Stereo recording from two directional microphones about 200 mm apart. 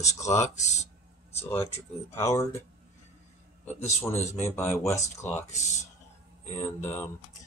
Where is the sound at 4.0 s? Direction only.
10° left (ahead or behind).